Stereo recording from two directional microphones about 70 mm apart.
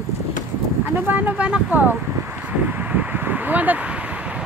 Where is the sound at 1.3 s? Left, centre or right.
Centre.